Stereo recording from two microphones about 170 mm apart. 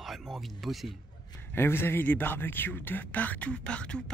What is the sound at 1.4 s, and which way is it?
Speech, 15° left (ahead or behind).